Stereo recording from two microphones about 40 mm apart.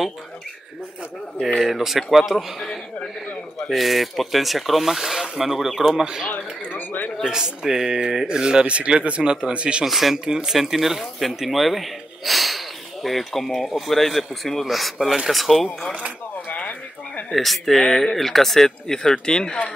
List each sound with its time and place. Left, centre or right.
1.6 s speech: centre
3.7 s speech: centre
6.3 s a sound: left
7.2 s speech: centre
9.8 s speech: centre
10.1 s speech: centre
10.4 s speech: centre
16.4 s a sound: left
17.3 s speech: centre